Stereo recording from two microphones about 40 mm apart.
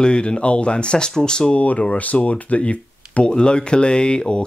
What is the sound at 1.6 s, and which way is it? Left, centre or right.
Speech, left.